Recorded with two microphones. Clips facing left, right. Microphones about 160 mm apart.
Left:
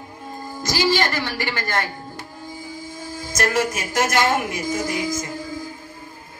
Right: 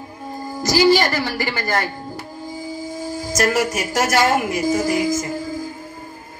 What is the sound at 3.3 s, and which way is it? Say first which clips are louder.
A woman's voice: right 2 dB; 10° right (ahead or behind).